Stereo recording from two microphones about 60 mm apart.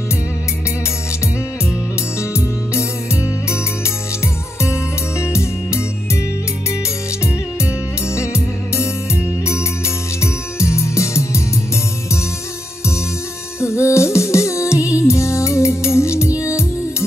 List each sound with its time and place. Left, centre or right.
2.1 s music: left
5.2 s music: left
8.1 s music: left
13.6 s music: left